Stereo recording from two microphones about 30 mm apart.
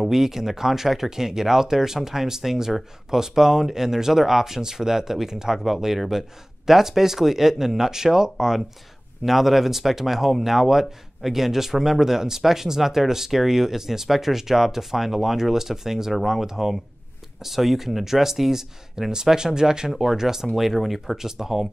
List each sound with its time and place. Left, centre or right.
0.0 s speech: centre
9.2 s speech: centre
20.5 s speech: centre
21.2 s speech: centre